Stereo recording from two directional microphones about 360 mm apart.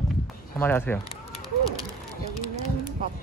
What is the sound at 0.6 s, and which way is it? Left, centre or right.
Speech, centre.